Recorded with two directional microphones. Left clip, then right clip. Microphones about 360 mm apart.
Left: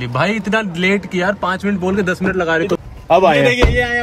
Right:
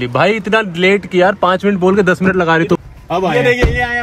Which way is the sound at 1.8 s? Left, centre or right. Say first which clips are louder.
Right 6 dB; centre.